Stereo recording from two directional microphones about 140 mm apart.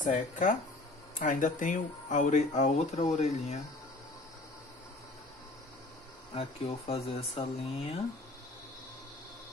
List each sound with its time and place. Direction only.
0.0 s speech: 65° left (ahead or behind); by 3.6 s 50° left (ahead or behind)
6.3 s speech: 45° left (ahead or behind)